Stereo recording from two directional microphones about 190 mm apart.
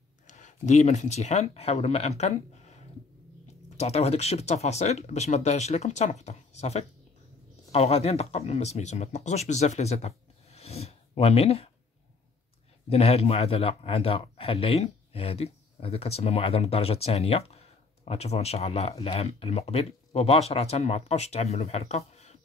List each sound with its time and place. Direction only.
0.3 s speech: 40° left (ahead or behind)
12.9 s speech: 35° left (ahead or behind)